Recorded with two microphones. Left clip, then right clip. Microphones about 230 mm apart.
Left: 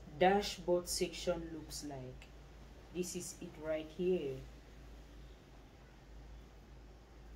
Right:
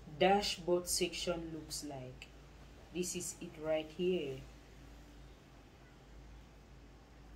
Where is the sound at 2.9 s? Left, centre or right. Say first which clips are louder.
Right 2 dB; centre.